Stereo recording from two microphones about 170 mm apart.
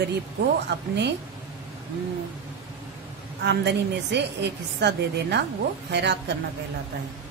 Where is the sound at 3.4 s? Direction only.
90° right.